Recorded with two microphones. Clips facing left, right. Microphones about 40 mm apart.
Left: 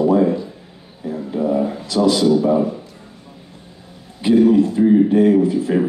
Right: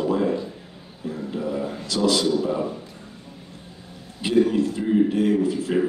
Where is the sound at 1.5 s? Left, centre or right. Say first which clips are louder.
Left 8 dB; left.